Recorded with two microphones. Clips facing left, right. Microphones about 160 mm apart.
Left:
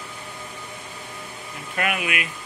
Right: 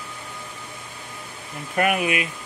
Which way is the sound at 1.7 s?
40° right (ahead or behind).